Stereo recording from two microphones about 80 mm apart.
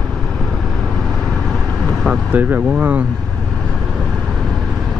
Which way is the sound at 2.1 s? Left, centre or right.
Right.